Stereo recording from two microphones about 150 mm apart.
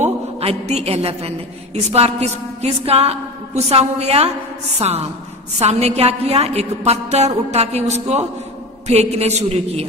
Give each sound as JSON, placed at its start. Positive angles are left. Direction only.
{"t": 0.0, "sound": "a man's voice", "side_deg": -45}